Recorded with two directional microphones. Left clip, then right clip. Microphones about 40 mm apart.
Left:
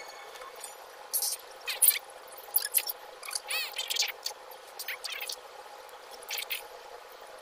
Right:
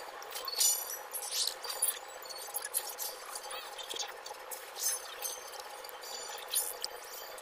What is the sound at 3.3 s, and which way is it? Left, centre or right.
Drip, left.